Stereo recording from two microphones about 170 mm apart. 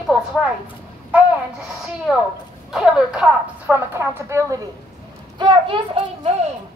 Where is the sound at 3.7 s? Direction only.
15° right (ahead or behind).